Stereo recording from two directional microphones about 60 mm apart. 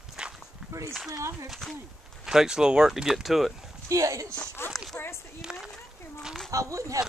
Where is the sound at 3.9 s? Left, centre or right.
Right.